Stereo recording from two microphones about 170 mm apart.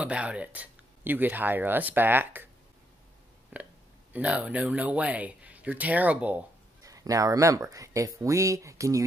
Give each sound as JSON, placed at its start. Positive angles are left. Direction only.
{"t": 0.0, "sound": "speech", "side_deg": -5}
{"t": 3.5, "sound": "burping", "side_deg": -10}
{"t": 4.1, "sound": "speech", "side_deg": -10}
{"t": 6.8, "sound": "speech", "side_deg": -20}